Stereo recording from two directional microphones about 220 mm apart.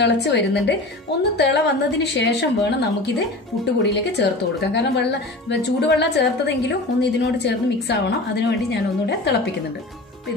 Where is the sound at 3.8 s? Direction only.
50° left (ahead or behind).